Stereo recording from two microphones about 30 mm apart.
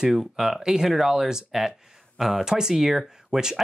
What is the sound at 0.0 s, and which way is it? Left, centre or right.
Speech, centre.